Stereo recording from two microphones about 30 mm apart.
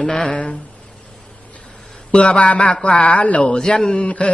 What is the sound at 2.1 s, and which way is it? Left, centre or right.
A man's voice, left.